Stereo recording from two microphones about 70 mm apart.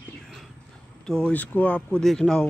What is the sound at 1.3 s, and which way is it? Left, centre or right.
Speech, left.